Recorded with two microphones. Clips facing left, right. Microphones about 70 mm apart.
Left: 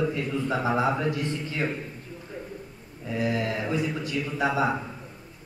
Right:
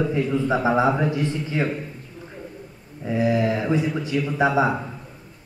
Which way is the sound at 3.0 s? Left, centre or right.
Right.